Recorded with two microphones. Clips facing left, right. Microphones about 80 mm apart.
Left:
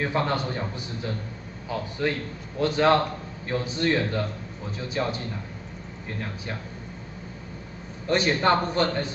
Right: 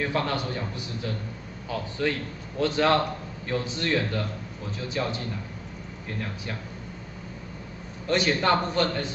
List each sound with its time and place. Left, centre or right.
0.0 s a man's voice: left
8.1 s a man's voice: left